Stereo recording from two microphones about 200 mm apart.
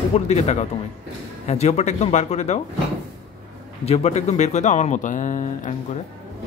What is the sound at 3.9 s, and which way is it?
Speech, 35° left (ahead or behind).